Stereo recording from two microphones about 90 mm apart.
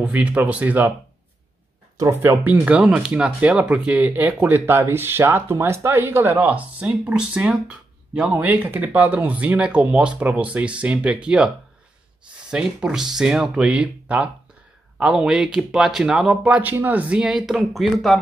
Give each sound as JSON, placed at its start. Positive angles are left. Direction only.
{"t": 0.0, "sound": "speech", "side_deg": -15}
{"t": 2.0, "sound": "speech", "side_deg": -35}
{"t": 2.4, "sound": "speech", "side_deg": -20}
{"t": 16.4, "sound": "speech", "side_deg": -15}
{"t": 17.2, "sound": "speech", "side_deg": -10}